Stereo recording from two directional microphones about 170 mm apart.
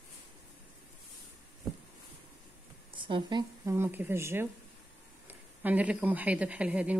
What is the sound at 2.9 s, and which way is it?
Speech, 30° right (ahead or behind).